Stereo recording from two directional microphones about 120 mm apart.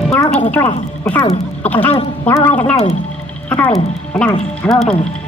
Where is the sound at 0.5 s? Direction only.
15° left (ahead or behind).